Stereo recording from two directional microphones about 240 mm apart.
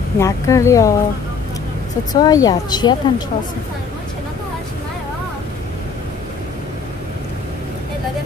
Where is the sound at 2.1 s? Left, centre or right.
Centre.